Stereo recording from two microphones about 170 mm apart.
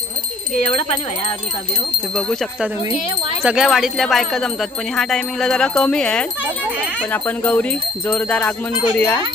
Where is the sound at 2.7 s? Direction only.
15° right (ahead or behind).